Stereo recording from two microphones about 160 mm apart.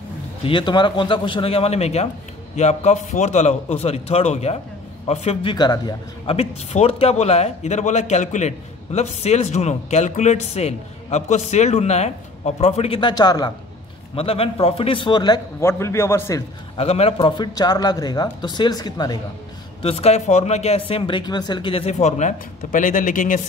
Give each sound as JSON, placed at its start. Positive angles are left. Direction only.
{"t": 0.4, "sound": "a man's voice", "side_deg": 30}
{"t": 6.3, "sound": "speech", "side_deg": 40}
{"t": 14.1, "sound": "a man's voice", "side_deg": 35}
{"t": 16.7, "sound": "a man's voice", "side_deg": 40}
{"t": 19.8, "sound": "speech", "side_deg": 40}